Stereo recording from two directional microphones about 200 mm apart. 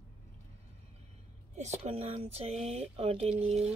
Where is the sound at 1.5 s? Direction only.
35° right (ahead or behind).